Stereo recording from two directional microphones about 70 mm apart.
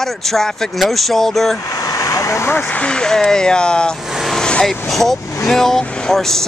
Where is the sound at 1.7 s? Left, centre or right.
Left.